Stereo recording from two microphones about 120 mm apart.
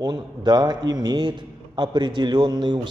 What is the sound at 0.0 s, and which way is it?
A man's voice, 35° right (ahead or behind).